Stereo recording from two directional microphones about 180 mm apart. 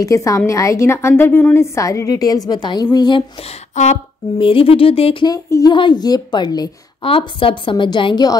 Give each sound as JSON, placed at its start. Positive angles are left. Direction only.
{"t": 0.0, "sound": "a woman's voice", "side_deg": 15}
{"t": 3.7, "sound": "a sound", "side_deg": 40}
{"t": 4.4, "sound": "speech", "side_deg": 30}
{"t": 5.3, "sound": "a woman's voice", "side_deg": 20}